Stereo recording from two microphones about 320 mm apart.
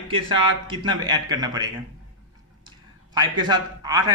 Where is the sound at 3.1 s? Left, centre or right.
Centre.